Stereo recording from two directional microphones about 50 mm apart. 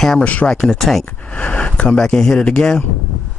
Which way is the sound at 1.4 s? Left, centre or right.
Left.